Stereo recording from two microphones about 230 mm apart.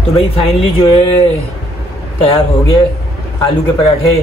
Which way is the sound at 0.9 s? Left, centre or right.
Left.